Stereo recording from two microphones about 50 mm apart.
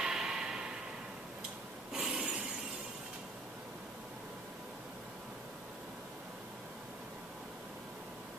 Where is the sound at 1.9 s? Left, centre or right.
Centre.